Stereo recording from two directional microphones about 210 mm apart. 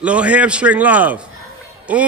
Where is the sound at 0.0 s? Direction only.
5° right (ahead or behind).